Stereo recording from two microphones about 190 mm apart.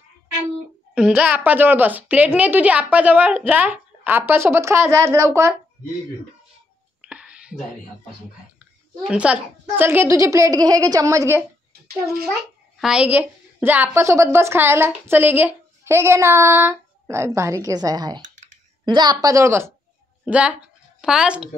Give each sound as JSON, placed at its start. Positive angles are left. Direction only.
{"t": 0.9, "sound": "a woman's voice", "side_deg": -5}
{"t": 7.0, "sound": "whispering", "side_deg": -5}
{"t": 8.5, "sound": "a woman's voice", "side_deg": -5}
{"t": 12.7, "sound": "a woman's voice", "side_deg": -5}